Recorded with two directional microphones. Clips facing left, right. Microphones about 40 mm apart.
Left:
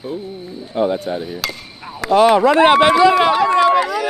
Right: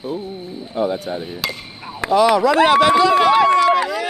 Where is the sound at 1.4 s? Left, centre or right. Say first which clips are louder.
Even; centre.